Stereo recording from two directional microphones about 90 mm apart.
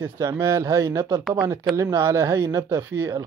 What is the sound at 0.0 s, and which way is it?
Speech, 30° right (ahead or behind).